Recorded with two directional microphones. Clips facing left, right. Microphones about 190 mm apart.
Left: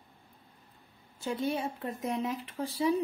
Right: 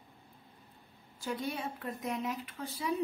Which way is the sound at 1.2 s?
25° left (ahead or behind).